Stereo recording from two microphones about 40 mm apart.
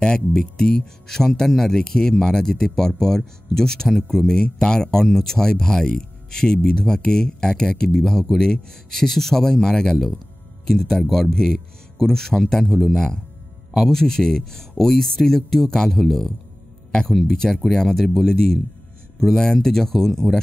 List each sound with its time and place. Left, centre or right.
0.0 s speech: left
11.3 s speech: centre